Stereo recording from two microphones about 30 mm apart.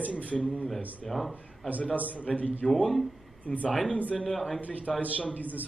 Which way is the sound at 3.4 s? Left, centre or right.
Left.